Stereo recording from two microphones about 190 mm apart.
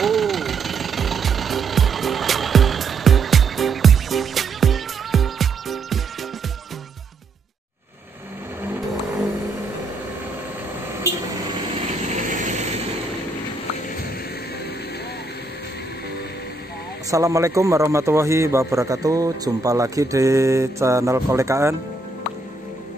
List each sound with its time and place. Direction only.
0.0 s music: centre (ahead or behind)
12.3 s vehicle: 40° right (ahead or behind)
17.1 s a man's voice: 15° right (ahead or behind)